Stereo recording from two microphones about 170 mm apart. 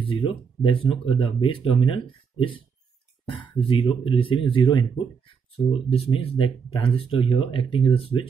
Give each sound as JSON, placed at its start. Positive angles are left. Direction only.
{"t": 0.0, "sound": "speech", "side_deg": 30}